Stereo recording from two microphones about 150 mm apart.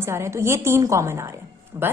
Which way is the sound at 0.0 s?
15° right (ahead or behind).